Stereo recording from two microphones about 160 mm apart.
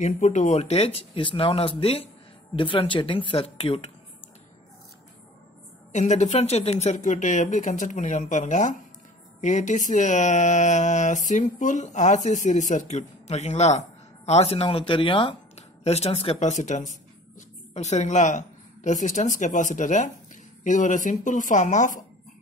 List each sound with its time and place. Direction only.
0.0 s speech: 50° left (ahead or behind)
5.9 s speech: 45° left (ahead or behind)